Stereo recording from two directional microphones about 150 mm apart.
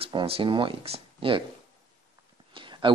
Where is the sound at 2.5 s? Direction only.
35° right (ahead or behind).